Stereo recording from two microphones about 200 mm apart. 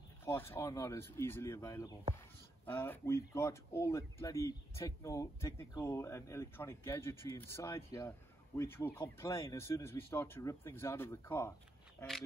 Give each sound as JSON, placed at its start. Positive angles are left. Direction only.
{"t": 0.2, "sound": "speech", "side_deg": 10}